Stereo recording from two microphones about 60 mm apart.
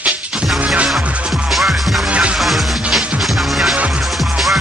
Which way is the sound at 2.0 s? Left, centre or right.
Right.